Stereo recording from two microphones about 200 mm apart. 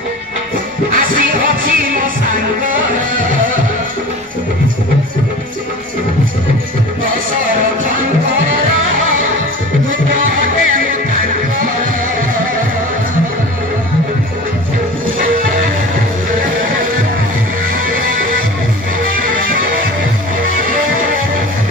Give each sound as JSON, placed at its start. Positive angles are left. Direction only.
{"t": 0.9, "sound": "music", "side_deg": -45}